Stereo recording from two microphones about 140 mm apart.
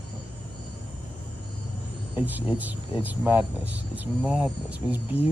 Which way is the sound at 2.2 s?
10° right (ahead or behind).